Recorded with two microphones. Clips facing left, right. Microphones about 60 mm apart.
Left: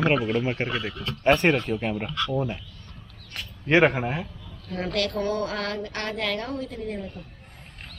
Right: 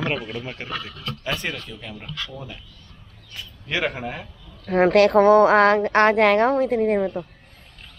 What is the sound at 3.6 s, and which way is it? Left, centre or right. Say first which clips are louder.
Speech: left 7 dB; left.